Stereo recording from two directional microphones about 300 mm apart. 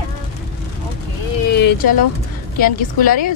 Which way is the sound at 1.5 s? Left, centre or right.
Left.